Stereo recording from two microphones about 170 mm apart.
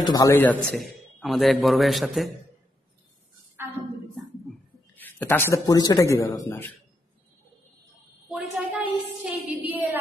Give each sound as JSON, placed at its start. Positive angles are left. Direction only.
{"t": 0.0, "sound": "a man's voice", "side_deg": 20}
{"t": 4.9, "sound": "a man's voice", "side_deg": 10}
{"t": 8.3, "sound": "a sound", "side_deg": -5}
{"t": 9.2, "sound": "music", "side_deg": -10}